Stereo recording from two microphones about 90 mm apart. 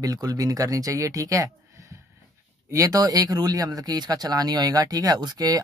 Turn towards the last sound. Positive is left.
turn(degrees=-45)  # may be behind; listen again after turning